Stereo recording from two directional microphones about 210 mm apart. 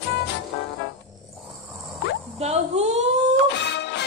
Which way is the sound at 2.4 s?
30° right (ahead or behind).